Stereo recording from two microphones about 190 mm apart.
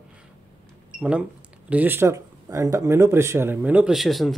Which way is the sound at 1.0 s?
5° right (ahead or behind).